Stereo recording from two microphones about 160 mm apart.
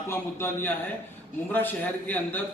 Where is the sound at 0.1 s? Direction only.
15° left (ahead or behind).